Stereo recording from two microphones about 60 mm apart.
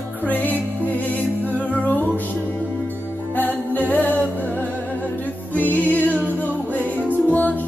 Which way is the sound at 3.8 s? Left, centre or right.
Left.